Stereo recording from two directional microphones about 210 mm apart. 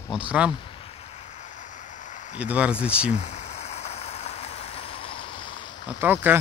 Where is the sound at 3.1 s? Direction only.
35° left (ahead or behind).